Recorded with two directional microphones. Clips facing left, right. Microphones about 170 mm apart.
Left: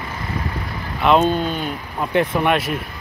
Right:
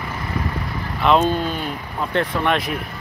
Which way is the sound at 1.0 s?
Centre (ahead or behind).